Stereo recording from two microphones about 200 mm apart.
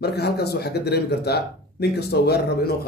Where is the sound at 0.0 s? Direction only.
55° left (ahead or behind).